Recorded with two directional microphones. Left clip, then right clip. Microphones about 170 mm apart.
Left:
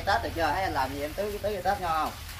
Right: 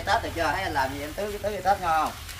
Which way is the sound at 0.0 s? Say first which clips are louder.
Right 2 dB; 25° right (ahead or behind).